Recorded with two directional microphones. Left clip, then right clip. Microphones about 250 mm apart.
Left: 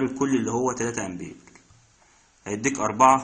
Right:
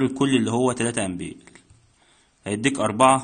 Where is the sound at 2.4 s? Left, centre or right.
Right.